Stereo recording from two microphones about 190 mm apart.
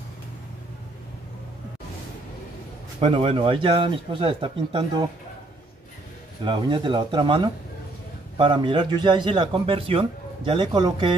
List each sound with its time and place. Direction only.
3.0 s a man's voice: 30° right (ahead or behind)
6.4 s a man's voice: 25° right (ahead or behind)